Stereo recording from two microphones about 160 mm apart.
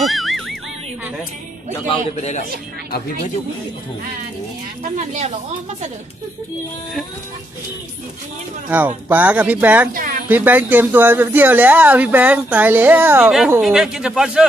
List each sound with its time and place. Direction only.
0.0 s music: centre (ahead or behind)
2.1 s a man's voice: 45° left (ahead or behind)
4.9 s a woman's voice: 45° right (ahead or behind)
8.6 s speech: 10° right (ahead or behind)
9.9 s speech: 60° right (ahead or behind)
10.2 s a man's voice: 10° right (ahead or behind)